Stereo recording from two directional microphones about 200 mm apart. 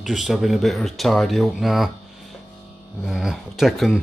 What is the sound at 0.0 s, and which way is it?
Speech, centre (ahead or behind).